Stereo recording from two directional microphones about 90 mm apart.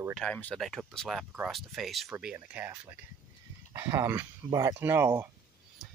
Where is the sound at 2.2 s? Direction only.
10° right (ahead or behind).